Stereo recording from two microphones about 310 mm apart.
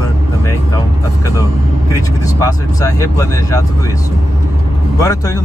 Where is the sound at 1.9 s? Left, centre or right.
Centre.